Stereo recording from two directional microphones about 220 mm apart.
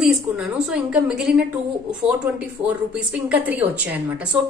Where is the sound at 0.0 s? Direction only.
5° right (ahead or behind).